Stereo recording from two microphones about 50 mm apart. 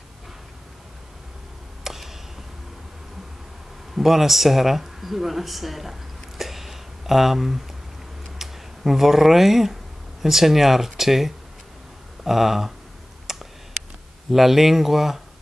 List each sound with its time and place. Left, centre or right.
1.9 s arrow: centre
3.9 s speech: centre
13.3 s tick: centre
14.3 s speech: centre